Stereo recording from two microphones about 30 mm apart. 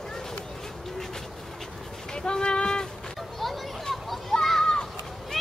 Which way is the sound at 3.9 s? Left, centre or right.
Centre.